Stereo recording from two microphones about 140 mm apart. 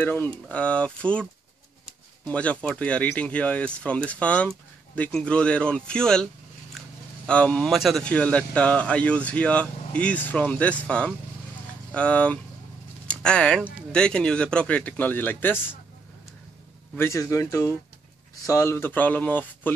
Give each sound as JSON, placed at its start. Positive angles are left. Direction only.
{"t": 0.0, "sound": "speech", "side_deg": 15}
{"t": 2.2, "sound": "speech", "side_deg": 10}
{"t": 7.2, "sound": "speech", "side_deg": 5}
{"t": 16.9, "sound": "speech", "side_deg": 20}